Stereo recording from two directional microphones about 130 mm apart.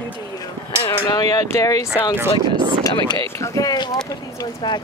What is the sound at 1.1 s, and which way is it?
Speech, 30° left (ahead or behind).